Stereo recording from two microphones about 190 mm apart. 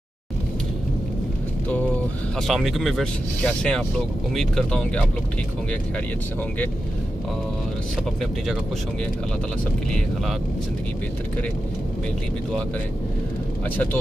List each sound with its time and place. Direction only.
2.4 s speech: centre (ahead or behind)